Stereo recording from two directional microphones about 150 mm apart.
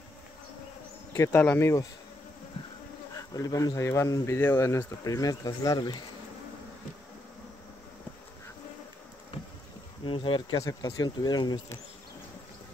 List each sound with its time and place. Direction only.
1.1 s speech: 15° left (ahead or behind)
3.2 s speech: 20° left (ahead or behind)
10.0 s speech: 35° left (ahead or behind)
10.6 s speech: 25° left (ahead or behind)